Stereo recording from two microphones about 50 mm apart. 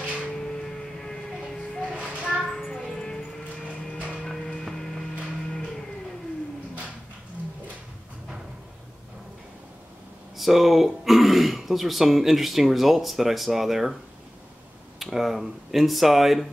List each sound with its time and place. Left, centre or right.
0.4 s music: centre
1.9 s child singing: right
2.3 s child singing: centre
2.6 s music: centre
4.6 s a sound: centre
10.3 s speech: centre
15.0 s speech: centre